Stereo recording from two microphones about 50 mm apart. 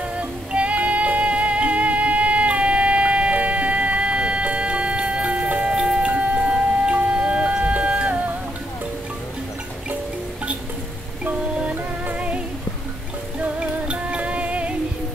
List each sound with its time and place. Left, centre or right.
0.2 s music: right
11.7 s music: right
13.4 s music: right